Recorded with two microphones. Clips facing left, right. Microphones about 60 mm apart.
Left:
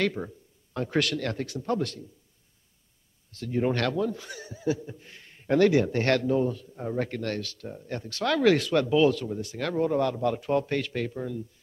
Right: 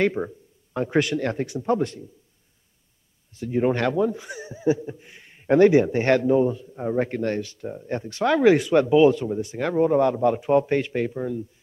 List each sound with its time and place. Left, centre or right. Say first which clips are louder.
0.0 s a man's voice: right 5 dB; right
3.3 s a man's voice: right 5 dB; centre